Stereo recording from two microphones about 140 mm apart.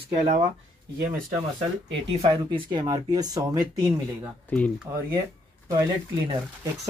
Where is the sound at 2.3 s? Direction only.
30° right (ahead or behind).